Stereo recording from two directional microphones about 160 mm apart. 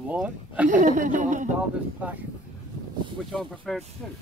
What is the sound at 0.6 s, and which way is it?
Speech, 50° right (ahead or behind).